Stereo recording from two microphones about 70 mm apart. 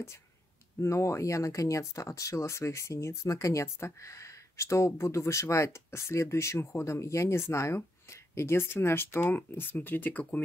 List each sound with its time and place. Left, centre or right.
0.7 s speech: left